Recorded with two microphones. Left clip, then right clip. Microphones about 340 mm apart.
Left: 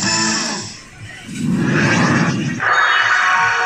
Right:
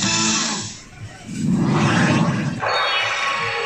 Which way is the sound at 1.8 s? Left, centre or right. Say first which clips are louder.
Left 3 dB; right.